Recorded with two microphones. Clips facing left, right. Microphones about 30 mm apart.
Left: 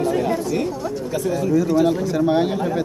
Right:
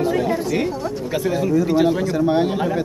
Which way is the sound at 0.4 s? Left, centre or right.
Right.